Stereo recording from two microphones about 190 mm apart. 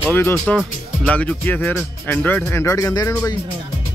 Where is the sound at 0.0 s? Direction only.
10° left (ahead or behind).